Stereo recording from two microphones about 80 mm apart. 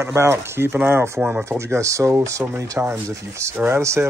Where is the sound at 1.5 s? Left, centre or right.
Right.